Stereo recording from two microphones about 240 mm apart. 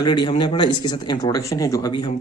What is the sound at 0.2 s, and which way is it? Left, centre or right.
Speech, centre.